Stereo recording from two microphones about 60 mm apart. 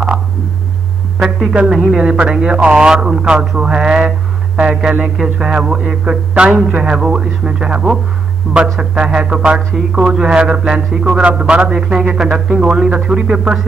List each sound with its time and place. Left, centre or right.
1.5 s speech: centre